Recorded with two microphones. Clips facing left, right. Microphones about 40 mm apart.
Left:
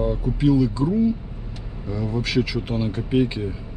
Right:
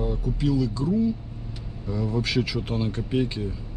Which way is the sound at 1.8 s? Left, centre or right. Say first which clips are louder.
Left 1 dB; centre.